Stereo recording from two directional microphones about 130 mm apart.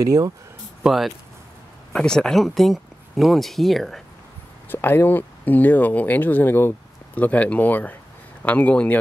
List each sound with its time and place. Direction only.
0.0 s speech: 25° right (ahead or behind)
0.8 s speech: centre (ahead or behind)
4.6 s a man's voice: 15° left (ahead or behind)